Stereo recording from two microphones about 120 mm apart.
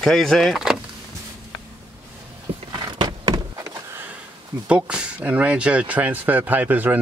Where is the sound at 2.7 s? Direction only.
35° right (ahead or behind).